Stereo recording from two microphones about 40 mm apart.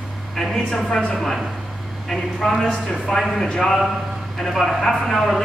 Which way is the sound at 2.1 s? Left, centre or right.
Centre.